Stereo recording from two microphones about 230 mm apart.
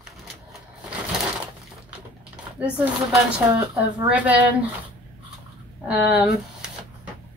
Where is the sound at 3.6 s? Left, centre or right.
Centre.